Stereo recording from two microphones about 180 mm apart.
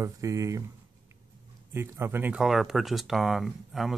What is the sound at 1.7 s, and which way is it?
Speech, 15° right (ahead or behind).